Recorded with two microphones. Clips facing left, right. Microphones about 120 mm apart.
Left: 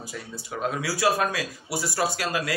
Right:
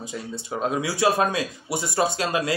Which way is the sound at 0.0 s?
25° right (ahead or behind).